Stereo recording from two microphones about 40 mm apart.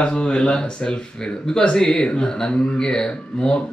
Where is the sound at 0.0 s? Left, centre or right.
Left.